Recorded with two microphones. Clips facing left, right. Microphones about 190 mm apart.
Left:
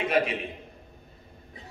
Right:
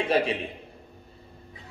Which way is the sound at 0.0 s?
30° right (ahead or behind).